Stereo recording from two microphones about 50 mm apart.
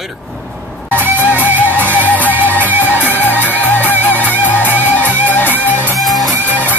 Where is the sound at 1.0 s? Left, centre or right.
Right.